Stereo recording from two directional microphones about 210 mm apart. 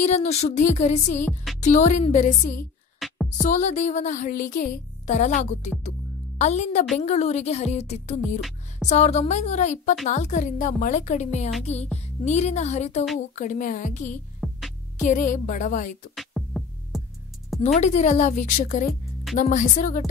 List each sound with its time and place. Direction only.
0.1 s speech: 30° left (ahead or behind)
1.2 s music: centre (ahead or behind)
1.6 s speech: 35° left (ahead or behind)
3.0 s music: centre (ahead or behind)
3.4 s speech: 35° left (ahead or behind)
8.4 s music: centre (ahead or behind)
8.8 s speech: 35° left (ahead or behind)
14.4 s music: centre (ahead or behind)
15.0 s speech: 35° left (ahead or behind)
16.2 s music: centre (ahead or behind)
17.7 s speech: 35° left (ahead or behind)